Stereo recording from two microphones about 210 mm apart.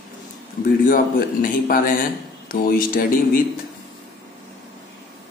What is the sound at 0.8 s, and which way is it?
A man's voice, 40° left (ahead or behind).